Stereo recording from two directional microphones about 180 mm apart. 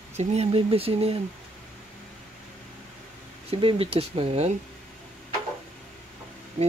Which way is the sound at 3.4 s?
30° right (ahead or behind).